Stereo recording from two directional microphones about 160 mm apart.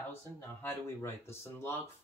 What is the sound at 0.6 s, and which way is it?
Speech, 15° left (ahead or behind).